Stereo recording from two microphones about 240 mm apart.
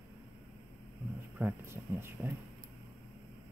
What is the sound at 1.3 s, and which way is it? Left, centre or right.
Speech, centre.